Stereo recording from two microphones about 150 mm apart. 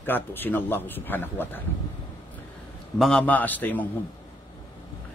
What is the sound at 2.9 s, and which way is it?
Speech, 5° left (ahead or behind).